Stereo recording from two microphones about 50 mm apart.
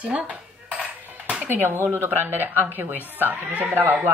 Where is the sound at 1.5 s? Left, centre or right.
Right.